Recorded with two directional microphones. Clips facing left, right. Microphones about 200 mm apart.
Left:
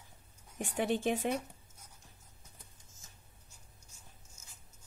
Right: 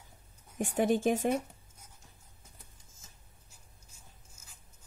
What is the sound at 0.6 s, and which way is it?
Speech, 50° right (ahead or behind).